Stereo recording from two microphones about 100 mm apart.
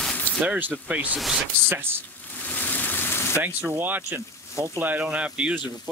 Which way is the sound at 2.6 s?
15° left (ahead or behind).